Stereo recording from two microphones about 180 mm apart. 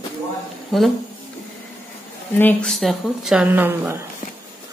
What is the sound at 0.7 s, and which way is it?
Speech, centre (ahead or behind).